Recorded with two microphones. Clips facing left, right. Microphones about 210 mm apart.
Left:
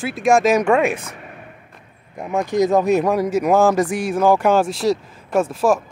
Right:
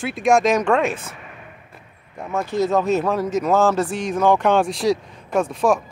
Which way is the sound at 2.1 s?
15° left (ahead or behind).